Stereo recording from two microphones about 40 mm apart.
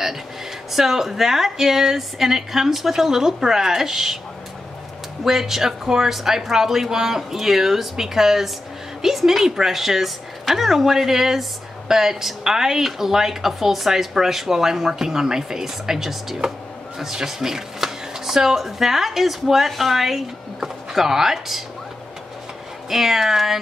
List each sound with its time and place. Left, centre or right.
0.7 s speech: centre
5.2 s speech: centre
22.8 s speech: centre